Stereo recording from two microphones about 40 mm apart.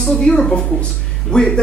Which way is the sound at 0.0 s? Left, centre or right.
Centre.